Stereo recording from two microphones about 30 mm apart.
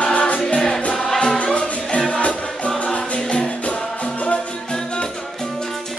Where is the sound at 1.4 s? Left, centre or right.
Left.